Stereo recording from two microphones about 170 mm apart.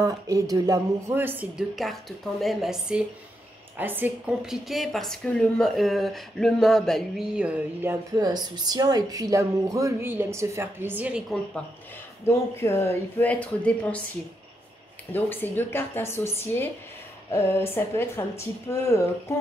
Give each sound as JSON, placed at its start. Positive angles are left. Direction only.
{"t": 0.0, "sound": "a woman's voice", "side_deg": -20}
{"t": 8.2, "sound": "speech", "side_deg": -25}
{"t": 12.3, "sound": "speech", "side_deg": 15}
{"t": 15.1, "sound": "speech", "side_deg": 10}